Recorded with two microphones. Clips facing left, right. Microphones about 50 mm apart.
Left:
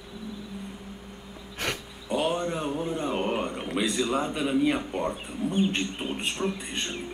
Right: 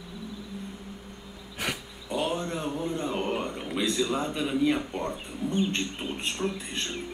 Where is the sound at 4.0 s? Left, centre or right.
Centre.